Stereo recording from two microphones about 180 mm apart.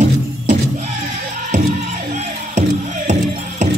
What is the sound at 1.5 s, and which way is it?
Music, 40° right (ahead or behind).